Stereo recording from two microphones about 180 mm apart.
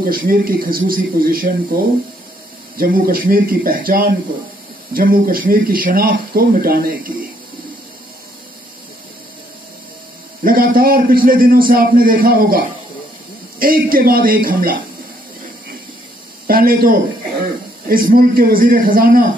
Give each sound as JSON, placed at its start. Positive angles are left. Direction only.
{"t": 0.0, "sound": "a man's voice", "side_deg": -50}
{"t": 2.8, "sound": "a man's voice", "side_deg": -55}
{"t": 10.4, "sound": "a man's voice", "side_deg": -55}
{"t": 16.4, "sound": "a man's voice", "side_deg": -55}